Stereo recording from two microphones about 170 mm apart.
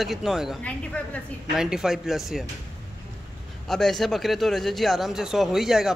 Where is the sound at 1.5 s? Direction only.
5° right (ahead or behind).